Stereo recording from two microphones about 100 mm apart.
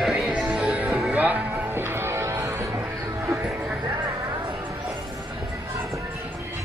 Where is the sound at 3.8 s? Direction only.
40° right (ahead or behind).